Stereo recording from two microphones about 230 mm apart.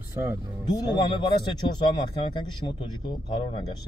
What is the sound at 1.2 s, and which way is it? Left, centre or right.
A man's voice, centre.